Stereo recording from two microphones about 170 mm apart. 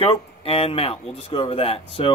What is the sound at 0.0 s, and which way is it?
Speech, 35° left (ahead or behind).